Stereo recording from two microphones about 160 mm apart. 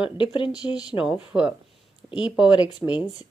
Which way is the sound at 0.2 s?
30° left (ahead or behind).